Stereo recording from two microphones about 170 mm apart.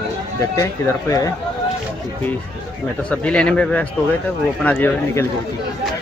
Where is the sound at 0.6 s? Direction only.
20° left (ahead or behind).